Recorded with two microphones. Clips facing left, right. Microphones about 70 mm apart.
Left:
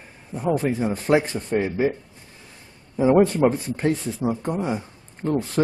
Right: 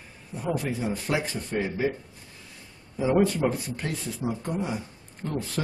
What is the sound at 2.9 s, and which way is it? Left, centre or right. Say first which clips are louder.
Speech: left 6 dB; left.